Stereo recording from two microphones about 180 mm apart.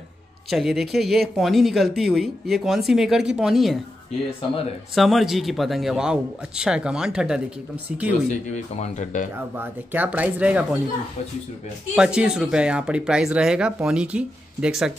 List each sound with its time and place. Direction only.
0.5 s speech: centre (ahead or behind)
4.9 s speech: centre (ahead or behind)
8.3 s speech: 40° left (ahead or behind)
9.6 s speech: 10° right (ahead or behind)
11.9 s speech: 5° right (ahead or behind)